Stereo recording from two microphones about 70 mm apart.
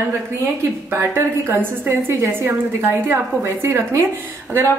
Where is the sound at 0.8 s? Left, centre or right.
Right.